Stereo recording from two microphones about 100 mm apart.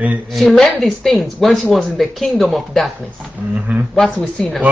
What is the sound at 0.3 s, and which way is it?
Speech, centre (ahead or behind).